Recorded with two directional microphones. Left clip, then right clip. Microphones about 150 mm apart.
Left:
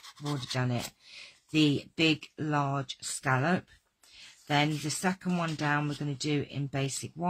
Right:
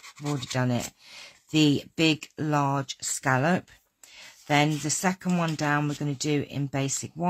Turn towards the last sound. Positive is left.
turn(degrees=-25)  # may be behind; listen again after turning